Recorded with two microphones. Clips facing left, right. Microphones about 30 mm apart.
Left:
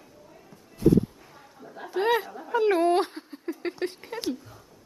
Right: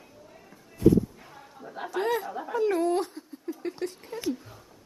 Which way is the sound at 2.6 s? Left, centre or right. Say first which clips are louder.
Left 4 dB; left.